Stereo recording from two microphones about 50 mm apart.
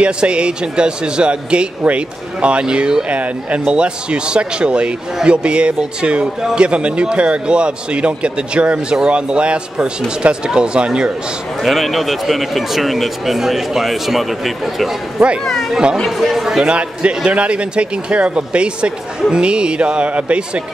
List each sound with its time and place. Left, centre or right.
0.0 s a man's voice: right
3.2 s a man's voice: right
11.6 s speech: centre
15.7 s speech: centre
16.0 s speech: centre
16.5 s a man's voice: right